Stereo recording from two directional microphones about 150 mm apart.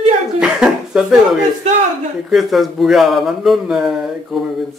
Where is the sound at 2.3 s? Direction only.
Centre (ahead or behind).